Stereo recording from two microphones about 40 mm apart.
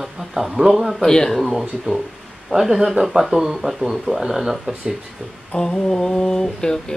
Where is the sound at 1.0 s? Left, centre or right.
Centre.